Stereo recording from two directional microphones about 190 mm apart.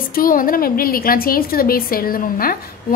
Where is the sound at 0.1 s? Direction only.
50° left (ahead or behind).